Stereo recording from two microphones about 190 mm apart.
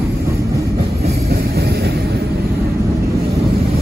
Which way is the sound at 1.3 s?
55° right (ahead or behind).